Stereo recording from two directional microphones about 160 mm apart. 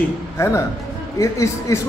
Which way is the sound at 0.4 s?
20° left (ahead or behind).